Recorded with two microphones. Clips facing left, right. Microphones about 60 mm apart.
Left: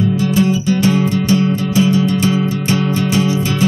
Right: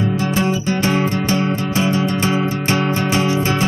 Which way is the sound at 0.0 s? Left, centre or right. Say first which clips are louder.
Left 4 dB; right.